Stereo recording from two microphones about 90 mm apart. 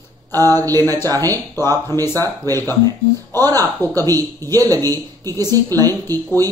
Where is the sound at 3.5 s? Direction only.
45° right (ahead or behind).